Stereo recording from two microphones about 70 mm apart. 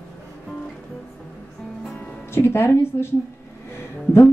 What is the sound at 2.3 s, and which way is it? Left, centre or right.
Female singing, left.